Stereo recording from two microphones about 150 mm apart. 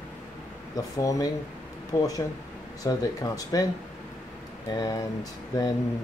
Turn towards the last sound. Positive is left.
turn(degrees=25)  # may be behind; listen again after turning